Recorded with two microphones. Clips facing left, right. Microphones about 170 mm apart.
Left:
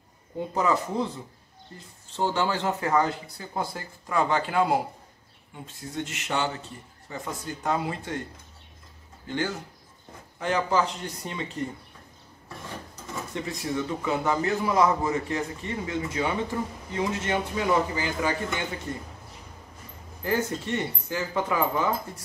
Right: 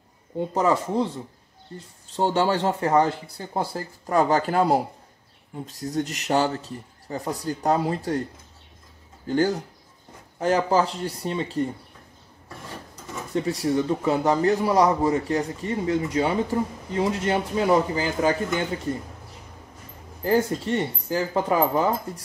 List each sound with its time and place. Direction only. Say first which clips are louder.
0.6 s a man's voice: right 3 dB; 30° right (ahead or behind)
2.1 s a man's voice: right 4 dB; 35° right (ahead or behind)
9.3 s a man's voice: right 8 dB; 40° right (ahead or behind)
13.3 s a man's voice: right 8 dB; 40° right (ahead or behind)
20.2 s a man's voice: right 5 dB; 35° right (ahead or behind)